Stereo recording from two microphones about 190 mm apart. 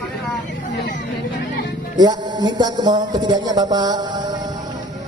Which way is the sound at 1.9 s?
20° right (ahead or behind).